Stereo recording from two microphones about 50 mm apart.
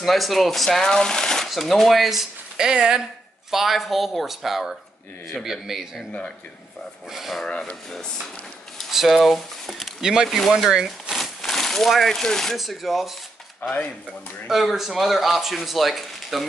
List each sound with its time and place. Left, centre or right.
0.0 s speech: centre
0.7 s speech: centre
1.5 s speech: centre
2.6 s a man's voice: centre
7.1 s speech: centre
7.4 s speech: centre
8.9 s speech: centre
10.7 s speech: centre
11.1 s a sound: centre
12.5 s speech: centre
13.6 s speech: left
14.5 s speech: centre